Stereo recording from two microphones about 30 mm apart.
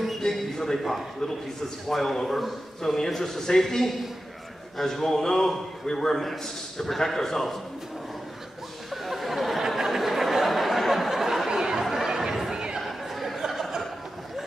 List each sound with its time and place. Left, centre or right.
0.2 s a sound: centre
1.9 s a man's voice: centre
8.9 s a sound: centre
11.4 s chatter: centre
12.5 s chatter: right
12.8 s chatter: centre